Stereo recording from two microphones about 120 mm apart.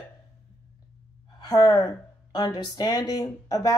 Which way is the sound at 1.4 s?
30° left (ahead or behind).